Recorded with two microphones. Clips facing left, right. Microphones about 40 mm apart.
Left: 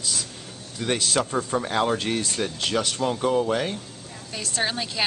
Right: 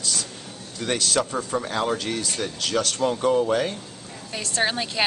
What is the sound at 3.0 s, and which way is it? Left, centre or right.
Speech, centre.